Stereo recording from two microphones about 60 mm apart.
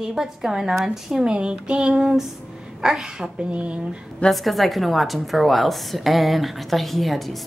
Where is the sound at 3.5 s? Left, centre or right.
Right.